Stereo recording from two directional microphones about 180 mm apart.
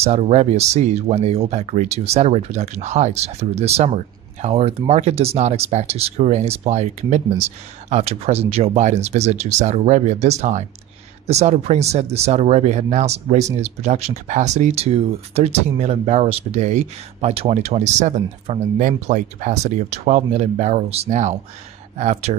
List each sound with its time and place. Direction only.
0.0 s speech: 35° right (ahead or behind)